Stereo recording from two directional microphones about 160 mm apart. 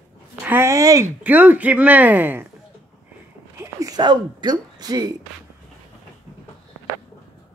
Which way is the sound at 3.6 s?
20° right (ahead or behind).